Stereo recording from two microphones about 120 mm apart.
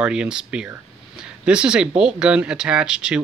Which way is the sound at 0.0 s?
10° right (ahead or behind).